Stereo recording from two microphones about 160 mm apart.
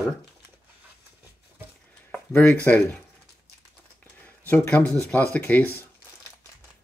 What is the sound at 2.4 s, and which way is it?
Speech, 10° left (ahead or behind).